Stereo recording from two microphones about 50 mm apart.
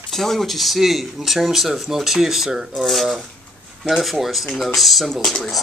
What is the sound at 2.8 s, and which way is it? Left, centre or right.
Speech, centre.